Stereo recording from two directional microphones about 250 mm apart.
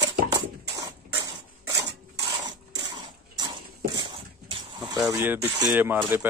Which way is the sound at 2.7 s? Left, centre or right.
Centre.